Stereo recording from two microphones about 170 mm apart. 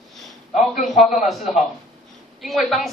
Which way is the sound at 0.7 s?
Centre (ahead or behind).